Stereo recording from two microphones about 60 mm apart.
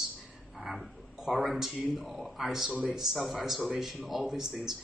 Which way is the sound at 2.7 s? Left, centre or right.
Right.